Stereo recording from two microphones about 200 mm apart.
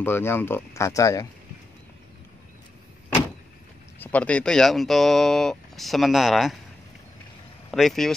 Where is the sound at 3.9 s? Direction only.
5° left (ahead or behind).